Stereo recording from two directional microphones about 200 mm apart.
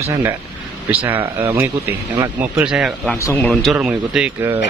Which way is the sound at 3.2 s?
10° left (ahead or behind).